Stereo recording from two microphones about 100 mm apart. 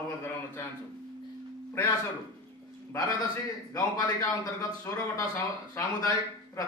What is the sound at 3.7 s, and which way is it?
A man's voice, 35° left (ahead or behind).